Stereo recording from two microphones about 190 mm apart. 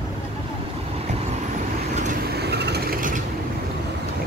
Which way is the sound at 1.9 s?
40° right (ahead or behind).